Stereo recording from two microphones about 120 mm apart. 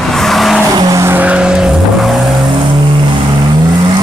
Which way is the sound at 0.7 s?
30° right (ahead or behind).